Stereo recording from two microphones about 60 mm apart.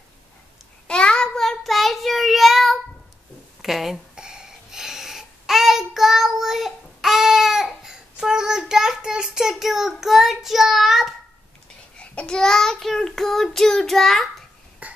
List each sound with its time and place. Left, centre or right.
0.8 s child singing: centre
3.6 s speech: centre
4.1 s babbling: centre
12.0 s child singing: centre
14.8 s burping: right